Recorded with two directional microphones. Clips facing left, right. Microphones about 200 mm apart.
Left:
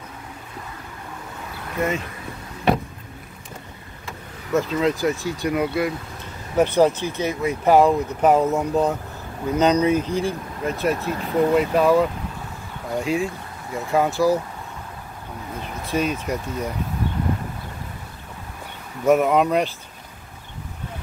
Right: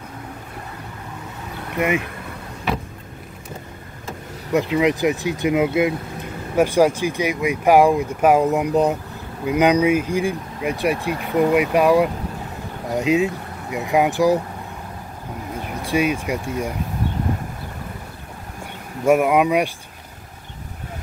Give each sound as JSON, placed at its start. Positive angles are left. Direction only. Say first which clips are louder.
{"t": 1.8, "sound": "speech", "louder": "right 3 dB", "side_deg": -15}
{"t": 4.5, "sound": "speech", "louder": "right 2 dB", "side_deg": -15}
{"t": 6.5, "sound": "speech", "louder": "right 1 dB", "side_deg": -10}
{"t": 15.8, "sound": "speech", "louder": "right 3 dB", "side_deg": -10}
{"t": 19.0, "sound": "speech", "louder": "right 1 dB", "side_deg": -10}